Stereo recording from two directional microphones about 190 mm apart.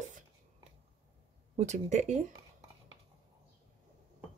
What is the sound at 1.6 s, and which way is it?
Speech, 35° right (ahead or behind).